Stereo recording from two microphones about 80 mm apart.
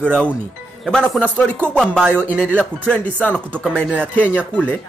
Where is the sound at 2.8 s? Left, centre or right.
Centre.